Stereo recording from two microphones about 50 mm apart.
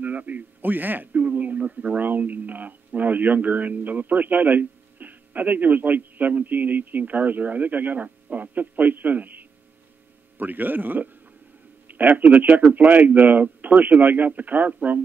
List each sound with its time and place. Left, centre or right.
0.0 s a man's voice: right